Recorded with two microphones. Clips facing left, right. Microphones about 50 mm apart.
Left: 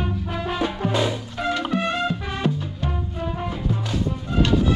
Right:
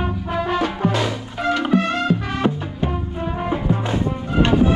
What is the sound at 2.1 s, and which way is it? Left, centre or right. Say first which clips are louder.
Music: right 5 dB; right.